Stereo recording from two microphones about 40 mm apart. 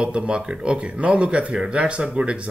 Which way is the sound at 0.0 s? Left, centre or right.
Right.